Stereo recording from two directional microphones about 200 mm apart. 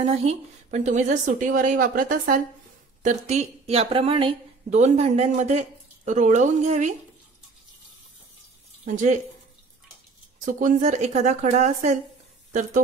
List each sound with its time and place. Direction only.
0.2 s a woman's voice: 35° right (ahead or behind)
8.8 s a woman's voice: 40° right (ahead or behind)
10.4 s a woman's voice: 40° right (ahead or behind)